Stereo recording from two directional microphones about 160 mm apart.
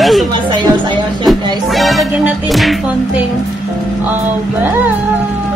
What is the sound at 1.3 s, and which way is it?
Music, centre (ahead or behind).